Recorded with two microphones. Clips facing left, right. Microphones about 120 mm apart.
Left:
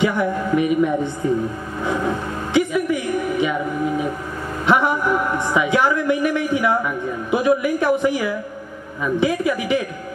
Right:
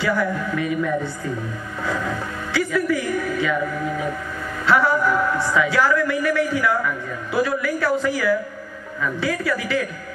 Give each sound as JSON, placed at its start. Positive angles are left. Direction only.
{"t": 0.0, "sound": "a man's voice", "side_deg": 20}
{"t": 1.9, "sound": "a sound", "side_deg": 20}
{"t": 4.6, "sound": "a man's voice", "side_deg": 20}